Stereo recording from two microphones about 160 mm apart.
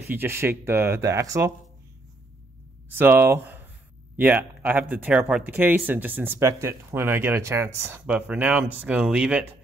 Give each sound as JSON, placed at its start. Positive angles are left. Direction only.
{"t": 0.1, "sound": "speech", "side_deg": -15}
{"t": 3.0, "sound": "speech", "side_deg": -10}